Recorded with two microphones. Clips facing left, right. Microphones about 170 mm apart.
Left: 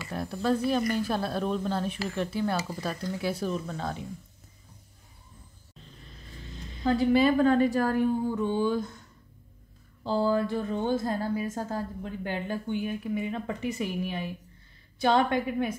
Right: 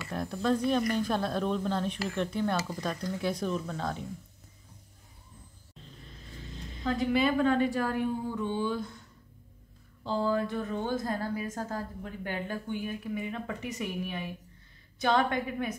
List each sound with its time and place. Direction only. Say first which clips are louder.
0.0 s speech: left 1 dB; 5° left (ahead or behind)
6.8 s a woman's voice: left 5 dB; 35° left (ahead or behind)
10.0 s a woman's voice: left 3 dB; 35° left (ahead or behind)